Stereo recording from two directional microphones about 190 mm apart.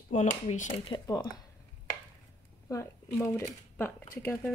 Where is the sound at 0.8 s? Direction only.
25° left (ahead or behind).